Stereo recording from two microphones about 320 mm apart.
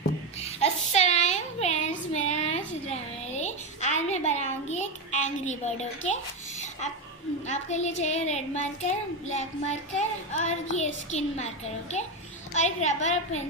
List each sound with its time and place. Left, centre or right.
0.4 s child singing: centre
7.4 s speech: left